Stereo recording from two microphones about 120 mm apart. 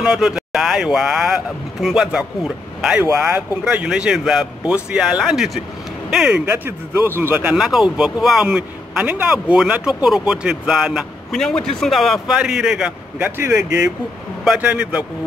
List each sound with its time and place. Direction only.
0.0 s speech: 5° right (ahead or behind)
6.6 s speech: 20° right (ahead or behind)
7.5 s speech: centre (ahead or behind)
14.4 s speech: 10° right (ahead or behind)